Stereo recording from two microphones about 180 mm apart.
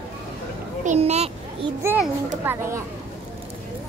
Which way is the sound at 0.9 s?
35° right (ahead or behind).